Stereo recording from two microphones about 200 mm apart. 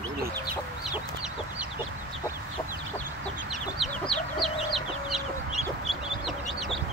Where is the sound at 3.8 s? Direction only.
Centre (ahead or behind).